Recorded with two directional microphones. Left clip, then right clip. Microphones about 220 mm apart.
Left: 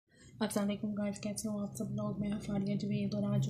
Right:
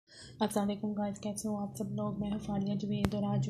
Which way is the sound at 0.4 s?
20° right (ahead or behind).